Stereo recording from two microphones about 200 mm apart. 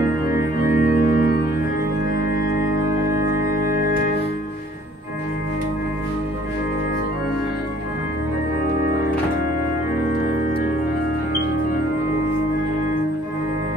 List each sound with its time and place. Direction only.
0.7 s organ: 45° left (ahead or behind)